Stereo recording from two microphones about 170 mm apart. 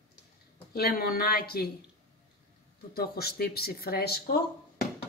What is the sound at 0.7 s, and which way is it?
Speech, 60° left (ahead or behind).